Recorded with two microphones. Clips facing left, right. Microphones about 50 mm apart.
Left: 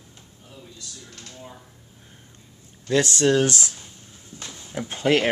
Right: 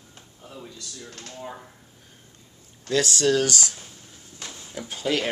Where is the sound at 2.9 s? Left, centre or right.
Left.